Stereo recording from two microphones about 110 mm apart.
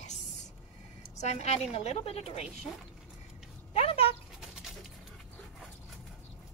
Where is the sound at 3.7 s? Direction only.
65° left (ahead or behind).